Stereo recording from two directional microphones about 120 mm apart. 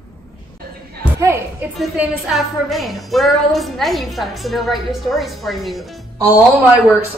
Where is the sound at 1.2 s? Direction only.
20° right (ahead or behind).